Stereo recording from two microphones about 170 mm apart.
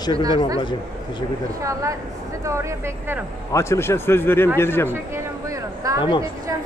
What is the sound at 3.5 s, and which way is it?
Speech, 15° left (ahead or behind).